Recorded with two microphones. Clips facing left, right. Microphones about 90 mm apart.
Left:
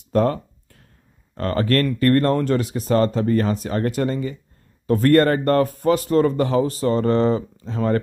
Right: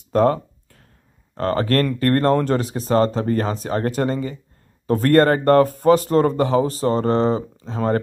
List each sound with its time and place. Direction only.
0.1 s speech: 35° right (ahead or behind)